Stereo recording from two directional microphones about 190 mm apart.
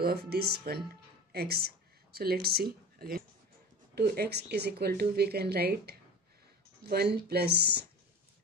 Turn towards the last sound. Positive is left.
turn(degrees=-60)  # may be behind; listen again after turning